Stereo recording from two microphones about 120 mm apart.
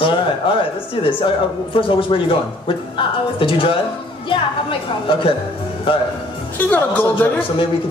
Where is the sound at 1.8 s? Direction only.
45° left (ahead or behind).